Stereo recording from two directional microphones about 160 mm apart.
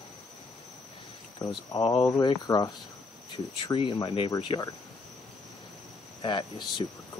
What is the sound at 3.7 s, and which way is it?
Speech, 30° left (ahead or behind).